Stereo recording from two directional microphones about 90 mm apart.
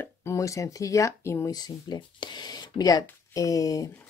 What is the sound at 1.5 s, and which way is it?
Speech, 55° left (ahead or behind).